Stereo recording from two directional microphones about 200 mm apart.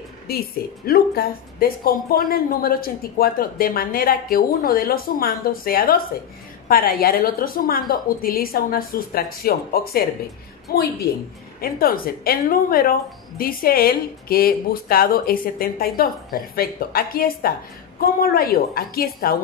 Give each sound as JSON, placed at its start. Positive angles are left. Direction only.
{"t": 0.8, "sound": "a woman's voice", "side_deg": 50}